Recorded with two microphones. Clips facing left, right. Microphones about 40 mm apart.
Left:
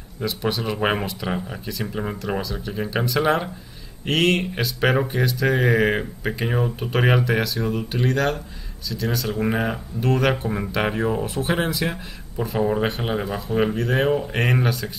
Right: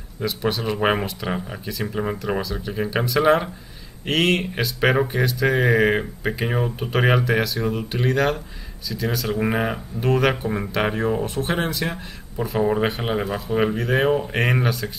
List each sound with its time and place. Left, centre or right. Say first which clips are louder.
0.2 s speech: right 1 dB; centre